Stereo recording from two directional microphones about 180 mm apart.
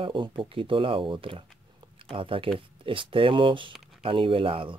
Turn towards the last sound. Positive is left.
turn(degrees=-30)  # may be behind; listen again after turning